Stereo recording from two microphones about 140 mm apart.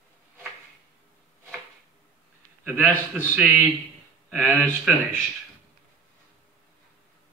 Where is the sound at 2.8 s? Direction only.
10° left (ahead or behind).